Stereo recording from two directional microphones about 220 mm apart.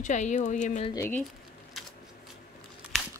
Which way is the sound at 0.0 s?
35° left (ahead or behind).